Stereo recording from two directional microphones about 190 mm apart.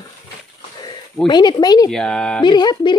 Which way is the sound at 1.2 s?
25° left (ahead or behind).